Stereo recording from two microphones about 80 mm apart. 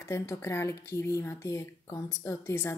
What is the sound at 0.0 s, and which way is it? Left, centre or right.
A woman's voice, left.